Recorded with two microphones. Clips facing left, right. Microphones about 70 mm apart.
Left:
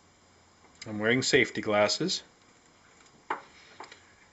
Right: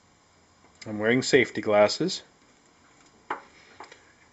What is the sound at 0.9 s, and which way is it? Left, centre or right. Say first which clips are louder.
Speech: right 3 dB; centre.